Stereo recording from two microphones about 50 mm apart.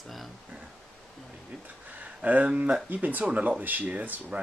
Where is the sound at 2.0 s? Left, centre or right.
Right.